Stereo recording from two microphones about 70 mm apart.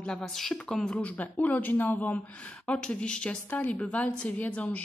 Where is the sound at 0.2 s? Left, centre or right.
Centre.